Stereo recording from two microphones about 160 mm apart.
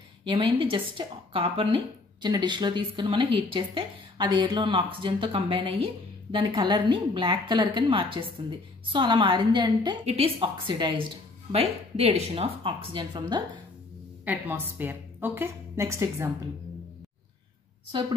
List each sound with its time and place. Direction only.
0.3 s a woman's voice: 35° right (ahead or behind)
14.2 s a woman's voice: 10° right (ahead or behind)